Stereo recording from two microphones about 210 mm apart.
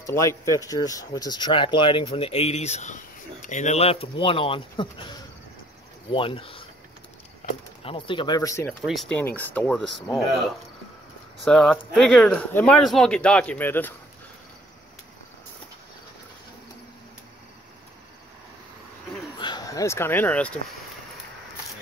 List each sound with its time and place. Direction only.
0.0 s speech: 15° left (ahead or behind)
7.8 s speech: 25° left (ahead or behind)
8.8 s speech: centre (ahead or behind)
19.3 s a sound: 20° left (ahead or behind)